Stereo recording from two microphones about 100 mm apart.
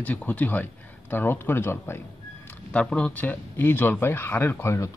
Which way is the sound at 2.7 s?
10° left (ahead or behind).